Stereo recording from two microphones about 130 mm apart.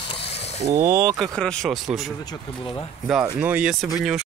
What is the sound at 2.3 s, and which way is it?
Speech, 30° left (ahead or behind).